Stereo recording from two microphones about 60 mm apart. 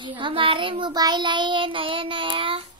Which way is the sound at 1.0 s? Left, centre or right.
Right.